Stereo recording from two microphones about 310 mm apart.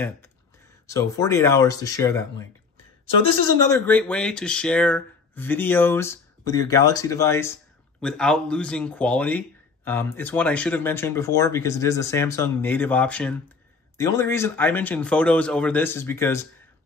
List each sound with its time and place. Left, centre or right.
0.8 s speech: centre